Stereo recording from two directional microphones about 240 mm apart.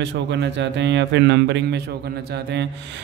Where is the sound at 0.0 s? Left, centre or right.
Right.